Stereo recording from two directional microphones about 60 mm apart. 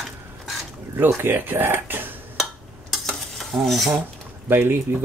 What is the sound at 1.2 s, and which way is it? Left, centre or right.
Speech, right.